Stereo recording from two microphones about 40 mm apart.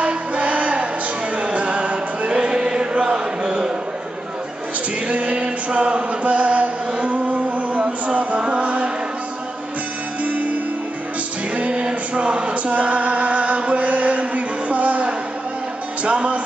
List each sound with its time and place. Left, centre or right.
0.0 s music: right
1.3 s chant: right; by 3.7 s centre
5.0 s chant: right
10.2 s music: right